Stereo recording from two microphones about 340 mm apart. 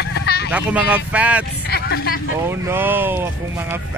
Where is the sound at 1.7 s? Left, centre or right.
Left.